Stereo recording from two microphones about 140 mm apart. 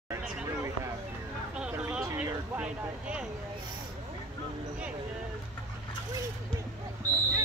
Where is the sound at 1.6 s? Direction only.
10° right (ahead or behind).